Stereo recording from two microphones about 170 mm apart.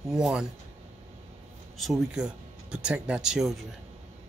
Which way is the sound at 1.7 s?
Centre (ahead or behind).